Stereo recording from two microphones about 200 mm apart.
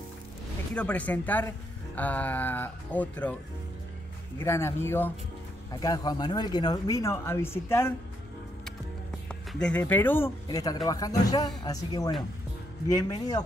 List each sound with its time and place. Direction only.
0.7 s speech: 5° left (ahead or behind)
4.4 s speech: 10° left (ahead or behind)
9.3 s speech: 5° left (ahead or behind)